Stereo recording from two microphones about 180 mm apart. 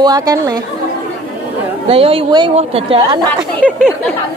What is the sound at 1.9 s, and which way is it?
A woman's voice, 30° right (ahead or behind).